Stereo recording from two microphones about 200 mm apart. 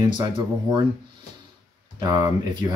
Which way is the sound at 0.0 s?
20° right (ahead or behind).